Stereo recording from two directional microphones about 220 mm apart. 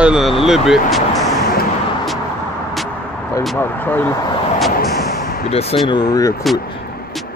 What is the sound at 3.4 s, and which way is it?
Speech, 5° left (ahead or behind).